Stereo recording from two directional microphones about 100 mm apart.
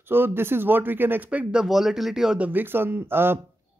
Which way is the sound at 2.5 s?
20° right (ahead or behind).